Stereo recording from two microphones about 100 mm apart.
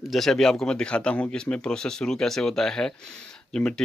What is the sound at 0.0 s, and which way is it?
A man's voice, centre (ahead or behind).